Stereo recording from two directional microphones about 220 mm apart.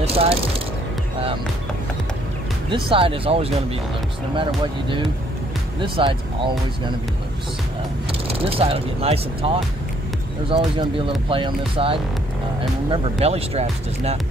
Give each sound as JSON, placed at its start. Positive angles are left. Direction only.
{"t": 0.0, "sound": "speech", "side_deg": -25}
{"t": 2.7, "sound": "speech", "side_deg": -25}
{"t": 5.8, "sound": "speech", "side_deg": -20}
{"t": 8.1, "sound": "speech", "side_deg": -25}
{"t": 10.5, "sound": "speech", "side_deg": -25}